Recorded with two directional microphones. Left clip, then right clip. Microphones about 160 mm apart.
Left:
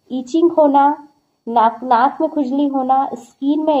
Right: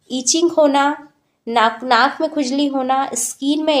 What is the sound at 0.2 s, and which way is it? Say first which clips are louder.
A woman's voice: left 1 dB; 30° right (ahead or behind).